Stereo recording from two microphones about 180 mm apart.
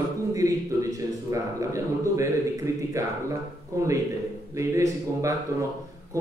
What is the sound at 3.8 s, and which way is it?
A man's voice, 20° right (ahead or behind).